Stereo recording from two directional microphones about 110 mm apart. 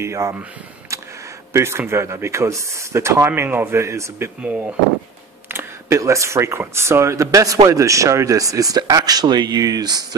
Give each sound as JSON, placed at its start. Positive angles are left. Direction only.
{"t": 0.0, "sound": "speech", "side_deg": -25}
{"t": 1.5, "sound": "speech", "side_deg": -25}
{"t": 4.4, "sound": "speech", "side_deg": -15}